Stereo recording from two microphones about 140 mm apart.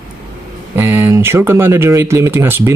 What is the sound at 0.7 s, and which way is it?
Speech, 15° right (ahead or behind).